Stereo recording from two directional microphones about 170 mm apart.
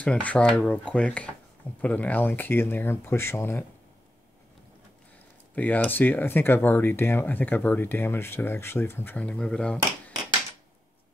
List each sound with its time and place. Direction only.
0.0 s speech: 5° left (ahead or behind)
5.5 s speech: 10° left (ahead or behind)